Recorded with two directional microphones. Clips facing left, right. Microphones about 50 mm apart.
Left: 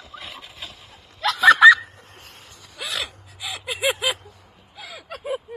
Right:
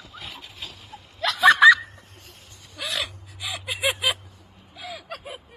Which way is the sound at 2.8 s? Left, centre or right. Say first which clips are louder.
Even; centre.